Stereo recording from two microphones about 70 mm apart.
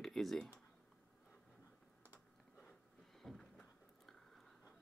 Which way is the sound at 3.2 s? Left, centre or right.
Centre.